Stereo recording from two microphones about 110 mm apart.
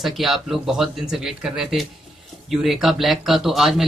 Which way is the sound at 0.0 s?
Centre (ahead or behind).